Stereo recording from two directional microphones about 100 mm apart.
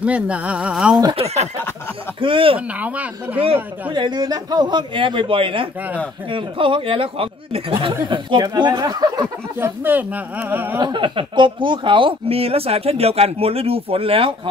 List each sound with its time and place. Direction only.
0.0 s speech: 15° right (ahead or behind)
1.1 s speech: 90° right
2.1 s speech: 60° right (ahead or behind)
3.9 s a man's voice: 45° right (ahead or behind); by 7.6 s 70° right (ahead or behind)
8.1 s a man's voice: 50° right (ahead or behind)
9.6 s speech: 20° right (ahead or behind)
10.8 s speech: 50° right (ahead or behind)